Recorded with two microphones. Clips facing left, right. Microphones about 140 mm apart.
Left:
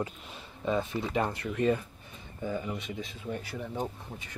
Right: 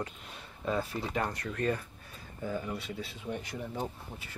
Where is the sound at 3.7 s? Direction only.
5° right (ahead or behind).